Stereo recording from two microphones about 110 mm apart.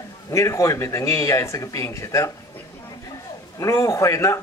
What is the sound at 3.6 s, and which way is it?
Speech, 30° left (ahead or behind).